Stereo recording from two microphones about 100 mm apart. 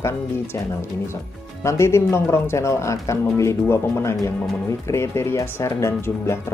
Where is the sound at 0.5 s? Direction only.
25° left (ahead or behind).